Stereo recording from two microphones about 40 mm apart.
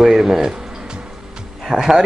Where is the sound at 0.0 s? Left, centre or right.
Centre.